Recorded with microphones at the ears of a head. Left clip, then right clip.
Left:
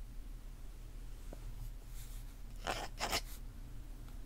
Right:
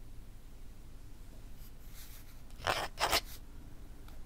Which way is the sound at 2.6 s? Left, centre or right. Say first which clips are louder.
Right 7 dB; right.